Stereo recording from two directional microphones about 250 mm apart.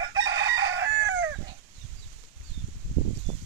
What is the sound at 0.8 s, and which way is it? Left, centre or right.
Chicken, right.